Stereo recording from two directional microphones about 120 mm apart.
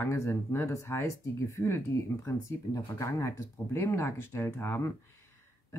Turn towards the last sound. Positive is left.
turn(degrees=20)  # may be behind; listen again after turning